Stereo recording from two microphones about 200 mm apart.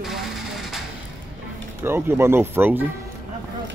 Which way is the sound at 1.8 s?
10° right (ahead or behind).